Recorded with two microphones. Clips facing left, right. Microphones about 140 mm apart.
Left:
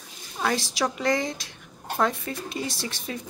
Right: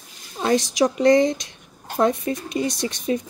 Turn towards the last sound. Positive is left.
turn(degrees=-20)  # may be behind; listen again after turning